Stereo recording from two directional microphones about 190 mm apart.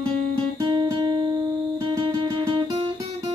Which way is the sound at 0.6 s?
25° right (ahead or behind).